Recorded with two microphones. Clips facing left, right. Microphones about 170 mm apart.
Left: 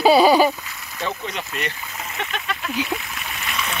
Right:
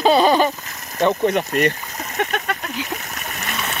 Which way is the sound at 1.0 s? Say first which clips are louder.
Right 11 dB; 55° right (ahead or behind).